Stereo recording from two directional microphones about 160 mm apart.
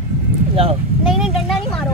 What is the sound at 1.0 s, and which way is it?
Vehicle, 5° right (ahead or behind).